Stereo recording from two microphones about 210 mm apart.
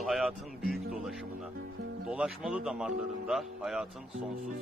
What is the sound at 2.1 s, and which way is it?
Speech, 5° right (ahead or behind).